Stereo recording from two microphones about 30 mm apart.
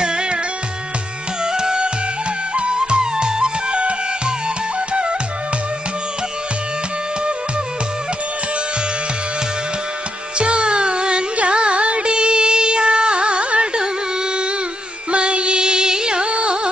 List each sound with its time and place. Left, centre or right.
0.0 s music: right
1.4 s music: right
10.3 s music: right
15.0 s music: right